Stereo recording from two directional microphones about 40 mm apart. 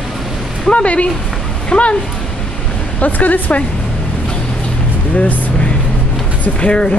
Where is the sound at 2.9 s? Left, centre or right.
Left.